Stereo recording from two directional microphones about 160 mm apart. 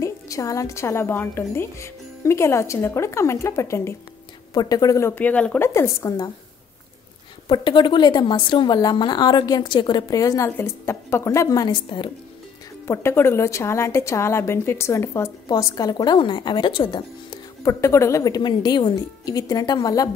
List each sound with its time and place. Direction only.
0.0 s a woman's voice: 20° left (ahead or behind)
5.7 s a woman's voice: 20° left (ahead or behind)
7.4 s a woman's voice: 30° left (ahead or behind)
12.8 s a woman's voice: 15° left (ahead or behind)
17.7 s a woman's voice: 15° left (ahead or behind)